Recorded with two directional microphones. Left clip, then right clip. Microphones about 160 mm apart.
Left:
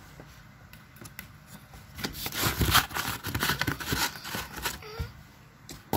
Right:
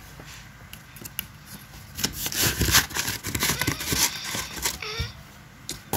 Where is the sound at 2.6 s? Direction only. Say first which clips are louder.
Right 1 dB; 30° left (ahead or behind).